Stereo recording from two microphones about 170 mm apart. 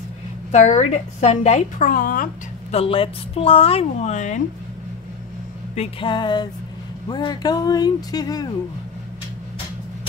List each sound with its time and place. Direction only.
0.5 s a woman's voice: 45° left (ahead or behind)
1.9 s a woman's voice: 55° left (ahead or behind)
2.7 s a woman's voice: 35° left (ahead or behind)
5.8 s speech: 30° left (ahead or behind)